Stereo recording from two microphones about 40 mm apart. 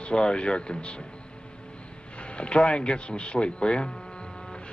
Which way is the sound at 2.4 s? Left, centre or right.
Left.